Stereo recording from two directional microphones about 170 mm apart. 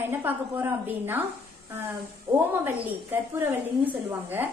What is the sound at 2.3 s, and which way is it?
Speech, 10° right (ahead or behind).